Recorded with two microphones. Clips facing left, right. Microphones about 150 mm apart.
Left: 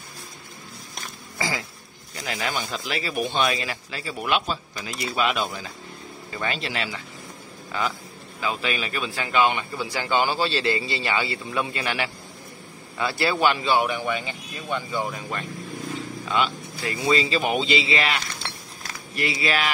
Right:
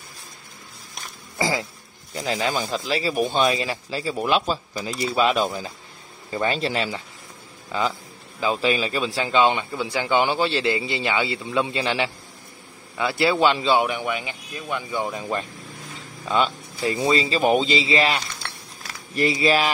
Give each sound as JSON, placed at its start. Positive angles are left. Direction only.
{"t": 1.4, "sound": "a sound", "side_deg": -25}
{"t": 2.1, "sound": "speech", "side_deg": -30}
{"t": 8.4, "sound": "a man's voice", "side_deg": -30}
{"t": 13.3, "sound": "a man's voice", "side_deg": -20}
{"t": 16.9, "sound": "speech", "side_deg": -35}